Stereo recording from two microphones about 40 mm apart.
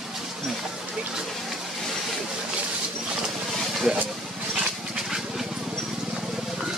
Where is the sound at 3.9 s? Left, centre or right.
Centre.